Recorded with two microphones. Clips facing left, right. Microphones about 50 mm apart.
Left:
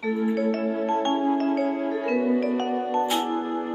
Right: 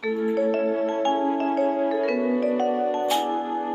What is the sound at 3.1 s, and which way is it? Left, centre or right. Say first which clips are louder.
Music: right 1 dB; centre.